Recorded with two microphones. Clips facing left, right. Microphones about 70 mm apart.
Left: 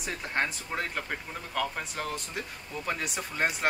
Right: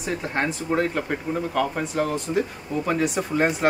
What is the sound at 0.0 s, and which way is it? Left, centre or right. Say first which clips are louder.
Speech: right 6 dB; centre.